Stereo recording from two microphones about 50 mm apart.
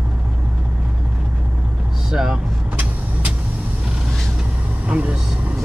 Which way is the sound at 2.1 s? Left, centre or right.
Centre.